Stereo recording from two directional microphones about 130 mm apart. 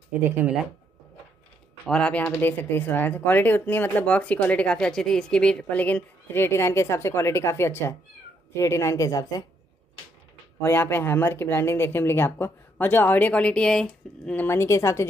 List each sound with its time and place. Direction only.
1.9 s speech: 5° left (ahead or behind); by 9.4 s 25° left (ahead or behind)
10.6 s speech: 15° left (ahead or behind)